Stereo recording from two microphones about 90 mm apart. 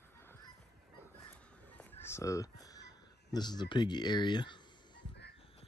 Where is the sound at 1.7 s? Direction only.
20° left (ahead or behind); by 5.0 s 55° left (ahead or behind).